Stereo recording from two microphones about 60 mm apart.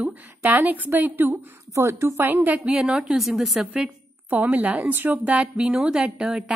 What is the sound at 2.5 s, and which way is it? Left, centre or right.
A woman's voice, centre.